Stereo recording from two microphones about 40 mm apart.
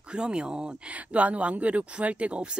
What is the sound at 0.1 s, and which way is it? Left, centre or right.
Speech, right.